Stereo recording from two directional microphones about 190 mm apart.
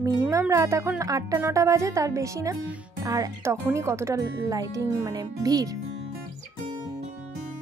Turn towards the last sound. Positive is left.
turn(degrees=-20)  # may be behind; listen again after turning